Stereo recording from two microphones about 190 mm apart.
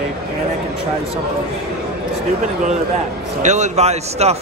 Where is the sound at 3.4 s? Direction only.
40° right (ahead or behind).